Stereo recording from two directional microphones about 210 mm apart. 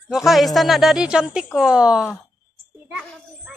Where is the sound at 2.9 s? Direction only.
Centre (ahead or behind).